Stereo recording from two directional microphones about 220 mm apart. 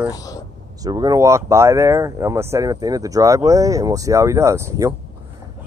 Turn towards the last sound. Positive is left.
turn(degrees=-15)  # may be behind; listen again after turning